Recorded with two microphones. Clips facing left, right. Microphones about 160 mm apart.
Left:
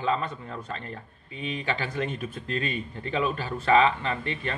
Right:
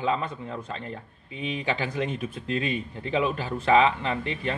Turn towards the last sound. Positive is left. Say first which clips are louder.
# right 2 dB
turn(degrees=-15)  # may be behind; listen again after turning